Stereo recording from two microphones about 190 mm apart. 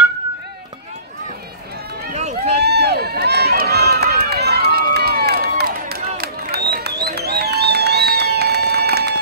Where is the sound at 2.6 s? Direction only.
60° right (ahead or behind).